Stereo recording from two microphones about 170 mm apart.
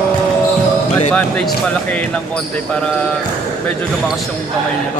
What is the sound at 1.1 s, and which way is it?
Speech, 5° left (ahead or behind).